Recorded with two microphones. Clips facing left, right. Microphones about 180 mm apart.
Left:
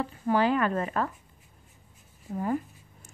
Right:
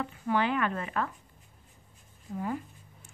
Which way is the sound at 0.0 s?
35° left (ahead or behind).